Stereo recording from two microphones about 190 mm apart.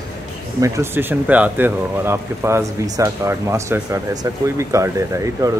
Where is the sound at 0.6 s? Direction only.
15° right (ahead or behind).